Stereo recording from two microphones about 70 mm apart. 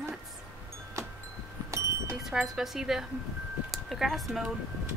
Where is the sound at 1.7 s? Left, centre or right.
Right.